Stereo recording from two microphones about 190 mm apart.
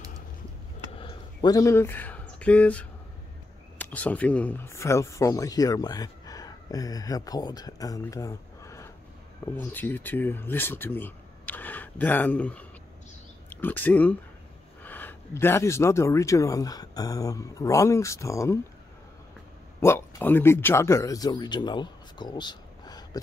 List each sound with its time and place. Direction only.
0.9 s a sound: 25° left (ahead or behind); by 2.9 s 5° left (ahead or behind)
3.7 s speech: 10° left (ahead or behind)
19.8 s speech: 10° left (ahead or behind)